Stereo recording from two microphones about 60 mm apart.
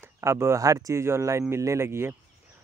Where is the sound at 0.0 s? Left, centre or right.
Right.